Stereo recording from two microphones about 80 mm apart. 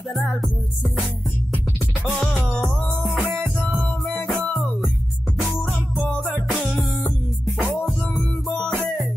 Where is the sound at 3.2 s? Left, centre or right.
Right.